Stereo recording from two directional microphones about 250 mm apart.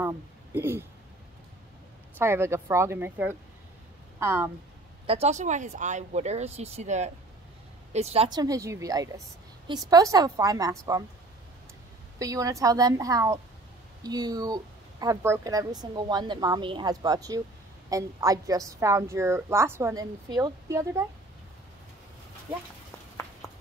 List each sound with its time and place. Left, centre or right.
0.0 s speech: centre
2.1 s speech: centre
5.0 s speech: right
12.2 s speech: centre